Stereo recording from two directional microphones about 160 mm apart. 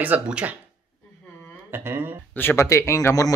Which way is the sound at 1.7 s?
15° right (ahead or behind).